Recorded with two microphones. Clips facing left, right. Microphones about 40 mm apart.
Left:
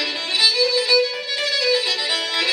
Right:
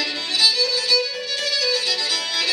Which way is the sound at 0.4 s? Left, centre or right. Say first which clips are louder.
Left 2 dB; centre.